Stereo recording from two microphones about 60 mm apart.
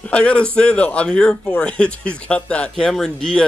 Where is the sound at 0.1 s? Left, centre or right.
Centre.